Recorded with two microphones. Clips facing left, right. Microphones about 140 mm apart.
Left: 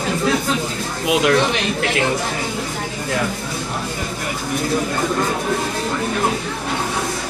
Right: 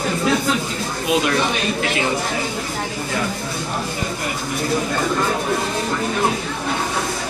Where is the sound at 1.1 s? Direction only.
75° left (ahead or behind).